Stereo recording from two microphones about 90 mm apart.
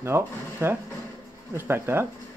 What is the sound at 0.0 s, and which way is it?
Speech, 25° right (ahead or behind).